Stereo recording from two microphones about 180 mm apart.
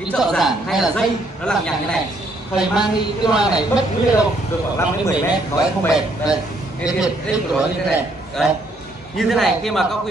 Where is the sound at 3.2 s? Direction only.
5° right (ahead or behind).